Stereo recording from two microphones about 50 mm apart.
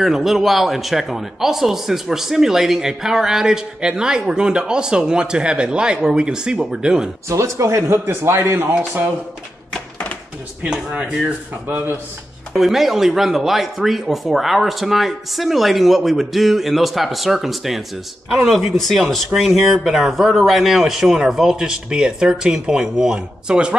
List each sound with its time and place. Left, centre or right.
0.0 s speech: centre
7.2 s speech: right
8.0 s a man's voice: right
10.6 s speech: right
12.5 s speech: centre